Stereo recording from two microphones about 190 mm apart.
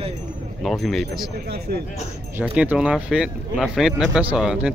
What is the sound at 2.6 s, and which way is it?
Speech, 5° right (ahead or behind).